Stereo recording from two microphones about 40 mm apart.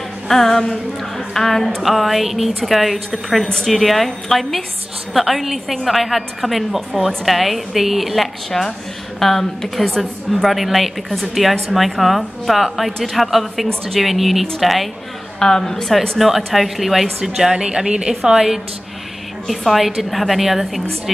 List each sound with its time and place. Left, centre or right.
0.3 s a woman's voice: centre
1.8 s a woman's voice: centre
15.3 s a woman's voice: centre
16.2 s a woman's voice: centre
17.4 s a woman's voice: centre
19.4 s a woman's voice: centre